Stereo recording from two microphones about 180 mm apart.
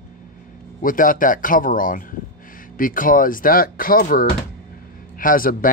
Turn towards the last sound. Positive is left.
turn(degrees=50)  # may be behind; listen again after turning